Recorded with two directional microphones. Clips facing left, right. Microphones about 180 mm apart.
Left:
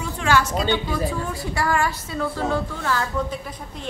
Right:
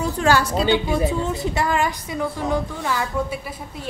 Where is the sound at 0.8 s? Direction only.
20° right (ahead or behind).